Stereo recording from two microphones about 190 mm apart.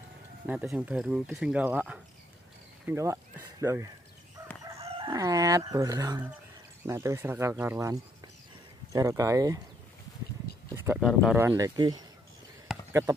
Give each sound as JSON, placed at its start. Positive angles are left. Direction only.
{"t": 0.5, "sound": "speech", "side_deg": -10}
{"t": 4.7, "sound": "chicken", "side_deg": -30}
{"t": 5.1, "sound": "speech", "side_deg": -20}
{"t": 10.9, "sound": "speech", "side_deg": 0}
{"t": 11.3, "sound": "speech", "side_deg": -15}